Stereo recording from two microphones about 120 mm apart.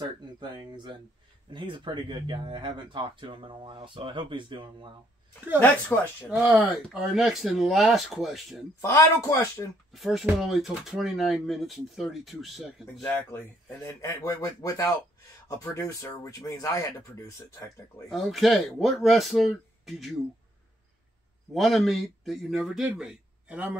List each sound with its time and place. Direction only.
0.4 s speech: 40° right (ahead or behind)
6.4 s speech: centre (ahead or behind)
8.8 s speech: 25° left (ahead or behind)
9.9 s speech: centre (ahead or behind)
13.0 s speech: 15° left (ahead or behind)
13.8 s speech: 30° left (ahead or behind)
18.1 s speech: centre (ahead or behind)
21.5 s speech: centre (ahead or behind)